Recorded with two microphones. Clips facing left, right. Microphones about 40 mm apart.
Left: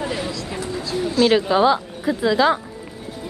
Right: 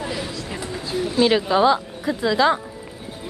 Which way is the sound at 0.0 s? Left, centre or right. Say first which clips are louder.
Left 3 dB; centre.